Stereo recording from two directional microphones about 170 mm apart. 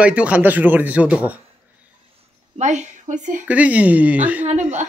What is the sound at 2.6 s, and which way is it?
Speech, 45° right (ahead or behind).